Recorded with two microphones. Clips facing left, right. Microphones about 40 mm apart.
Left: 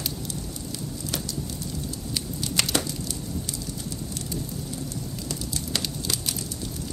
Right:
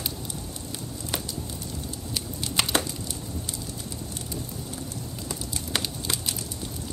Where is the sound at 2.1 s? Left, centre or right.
Centre.